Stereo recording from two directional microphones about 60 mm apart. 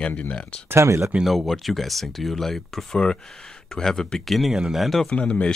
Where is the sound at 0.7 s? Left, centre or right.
Right.